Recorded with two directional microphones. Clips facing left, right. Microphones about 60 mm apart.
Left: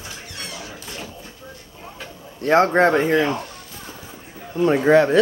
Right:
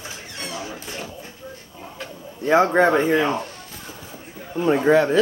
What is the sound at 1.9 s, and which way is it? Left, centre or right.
Speech, centre.